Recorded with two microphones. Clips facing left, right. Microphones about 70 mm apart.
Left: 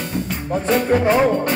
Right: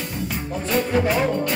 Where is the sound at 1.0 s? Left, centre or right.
Left.